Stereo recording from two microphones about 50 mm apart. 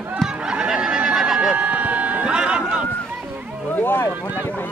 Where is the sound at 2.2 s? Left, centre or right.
Centre.